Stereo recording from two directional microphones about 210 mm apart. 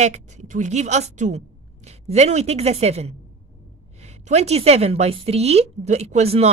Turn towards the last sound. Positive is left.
turn(degrees=-30)  # may be behind; listen again after turning